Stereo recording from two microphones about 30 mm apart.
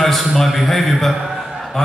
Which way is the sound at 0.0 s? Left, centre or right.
Centre.